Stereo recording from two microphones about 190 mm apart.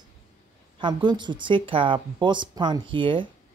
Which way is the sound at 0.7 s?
25° right (ahead or behind).